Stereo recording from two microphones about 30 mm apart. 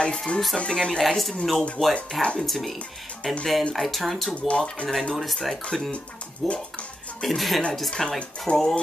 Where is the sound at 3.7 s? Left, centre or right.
Centre.